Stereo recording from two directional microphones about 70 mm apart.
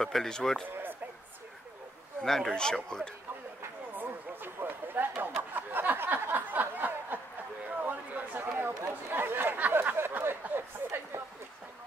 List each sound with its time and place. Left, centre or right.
0.0 s speech: centre
2.2 s speech: centre
3.9 s a sound: right
7.8 s chatter: right
8.4 s chatter: right